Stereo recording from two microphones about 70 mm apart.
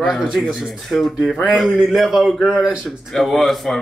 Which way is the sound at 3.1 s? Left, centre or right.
Centre.